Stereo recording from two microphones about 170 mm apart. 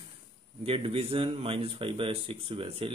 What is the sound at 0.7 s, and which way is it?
Speech, 35° right (ahead or behind).